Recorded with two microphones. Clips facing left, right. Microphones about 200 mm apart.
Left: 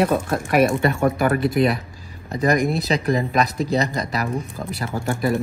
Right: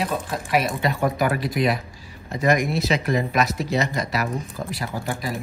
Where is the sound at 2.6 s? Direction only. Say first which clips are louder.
Left 2 dB; 35° left (ahead or behind).